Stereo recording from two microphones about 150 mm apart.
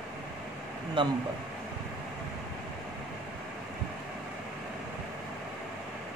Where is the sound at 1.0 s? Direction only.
30° right (ahead or behind).